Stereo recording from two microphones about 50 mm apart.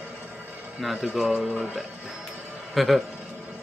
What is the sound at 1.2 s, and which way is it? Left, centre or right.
Speech, right.